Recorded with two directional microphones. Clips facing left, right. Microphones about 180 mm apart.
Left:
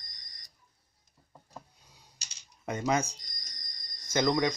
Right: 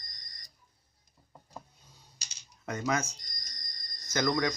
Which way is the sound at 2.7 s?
25° left (ahead or behind).